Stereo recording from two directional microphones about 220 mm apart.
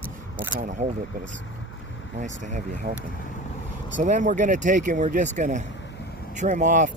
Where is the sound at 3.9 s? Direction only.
35° right (ahead or behind).